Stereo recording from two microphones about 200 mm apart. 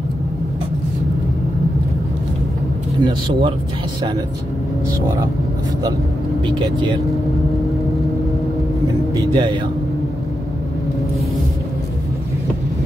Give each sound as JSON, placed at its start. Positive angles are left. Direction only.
{"t": 3.0, "sound": "speech", "side_deg": -25}
{"t": 9.3, "sound": "speech", "side_deg": -25}